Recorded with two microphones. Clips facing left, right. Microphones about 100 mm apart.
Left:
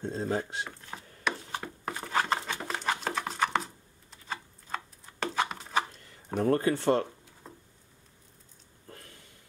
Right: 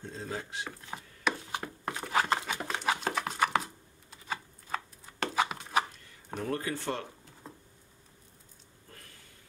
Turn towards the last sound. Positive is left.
turn(degrees=0)  # may be behind; listen again after turning